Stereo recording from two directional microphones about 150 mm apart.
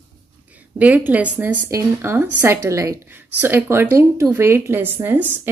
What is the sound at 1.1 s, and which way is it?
A woman's voice, 10° right (ahead or behind).